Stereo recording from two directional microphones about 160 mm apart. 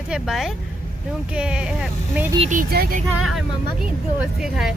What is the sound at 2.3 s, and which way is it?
Speech, 50° right (ahead or behind).